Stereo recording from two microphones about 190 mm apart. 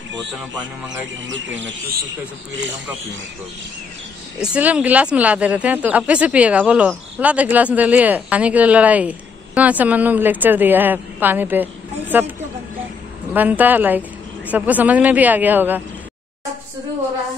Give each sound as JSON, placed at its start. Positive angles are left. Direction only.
{"t": 1.2, "sound": "speech", "side_deg": -75}
{"t": 4.4, "sound": "speech", "side_deg": -5}
{"t": 13.3, "sound": "speech", "side_deg": -10}